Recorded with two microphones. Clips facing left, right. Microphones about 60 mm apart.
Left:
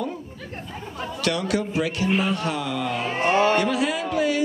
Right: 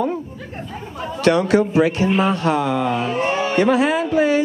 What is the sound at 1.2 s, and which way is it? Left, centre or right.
Speech, right.